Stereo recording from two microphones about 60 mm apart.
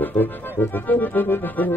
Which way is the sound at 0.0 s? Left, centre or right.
Left.